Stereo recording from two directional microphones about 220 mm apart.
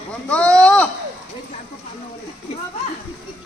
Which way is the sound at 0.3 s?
5° left (ahead or behind).